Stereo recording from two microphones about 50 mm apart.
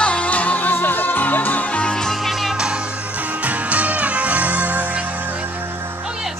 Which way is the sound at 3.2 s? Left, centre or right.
Right.